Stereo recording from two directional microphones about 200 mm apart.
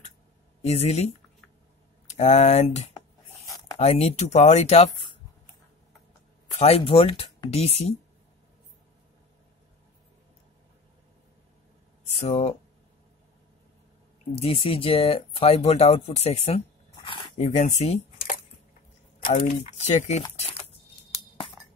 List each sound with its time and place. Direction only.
0.7 s speech: 30° left (ahead or behind)
6.5 s speech: 30° left (ahead or behind)
12.0 s speech: 30° left (ahead or behind)
14.3 s speech: 30° left (ahead or behind)
19.1 s speech: 45° left (ahead or behind)